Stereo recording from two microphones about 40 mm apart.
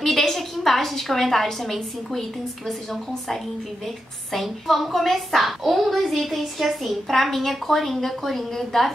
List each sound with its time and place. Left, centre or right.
0.0 s a woman's voice: centre